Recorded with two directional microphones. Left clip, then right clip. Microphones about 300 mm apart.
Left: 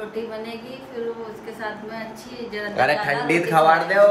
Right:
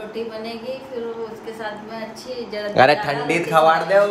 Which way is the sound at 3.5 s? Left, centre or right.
Centre.